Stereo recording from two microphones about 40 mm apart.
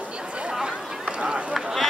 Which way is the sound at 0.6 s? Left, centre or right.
Right.